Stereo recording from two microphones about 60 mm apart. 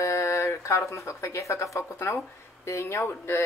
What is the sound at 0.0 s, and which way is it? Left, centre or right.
Speech, left.